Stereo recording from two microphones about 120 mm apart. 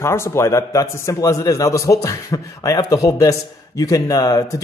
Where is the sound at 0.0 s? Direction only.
20° left (ahead or behind).